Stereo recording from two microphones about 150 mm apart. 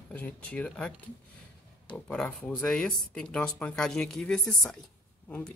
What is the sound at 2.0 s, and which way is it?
Speech, 5° left (ahead or behind).